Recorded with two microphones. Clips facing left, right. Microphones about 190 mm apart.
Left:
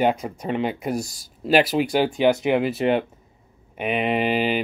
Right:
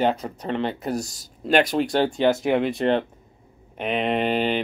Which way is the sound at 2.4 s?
Centre (ahead or behind).